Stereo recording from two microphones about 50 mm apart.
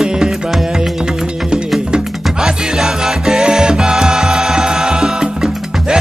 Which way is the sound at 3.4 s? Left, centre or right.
Centre.